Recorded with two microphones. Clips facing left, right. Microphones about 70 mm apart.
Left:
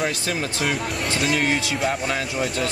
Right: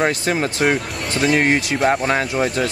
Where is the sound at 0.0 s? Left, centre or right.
Right.